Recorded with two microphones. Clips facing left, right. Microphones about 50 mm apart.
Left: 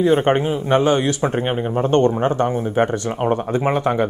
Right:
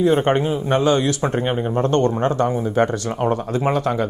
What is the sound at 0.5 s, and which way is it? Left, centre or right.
Speech, left.